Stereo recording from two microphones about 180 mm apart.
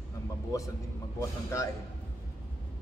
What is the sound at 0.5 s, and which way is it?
Speech, 15° left (ahead or behind).